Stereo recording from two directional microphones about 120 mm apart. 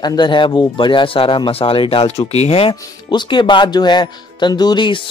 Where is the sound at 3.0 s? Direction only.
40° left (ahead or behind).